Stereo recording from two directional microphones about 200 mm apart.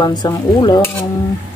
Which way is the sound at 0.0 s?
20° left (ahead or behind).